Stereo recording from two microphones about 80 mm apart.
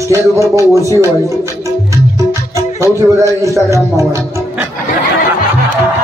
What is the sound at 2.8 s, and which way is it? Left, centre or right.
Speech, right.